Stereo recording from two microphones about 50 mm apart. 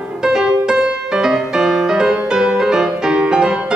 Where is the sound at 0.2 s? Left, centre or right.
Centre.